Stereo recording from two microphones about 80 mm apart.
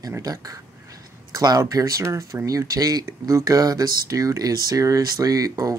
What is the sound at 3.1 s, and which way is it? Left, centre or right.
Speech, right.